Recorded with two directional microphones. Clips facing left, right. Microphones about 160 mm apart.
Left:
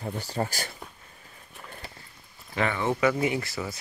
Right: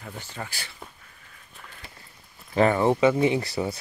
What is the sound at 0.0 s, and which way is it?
Speech, 35° left (ahead or behind).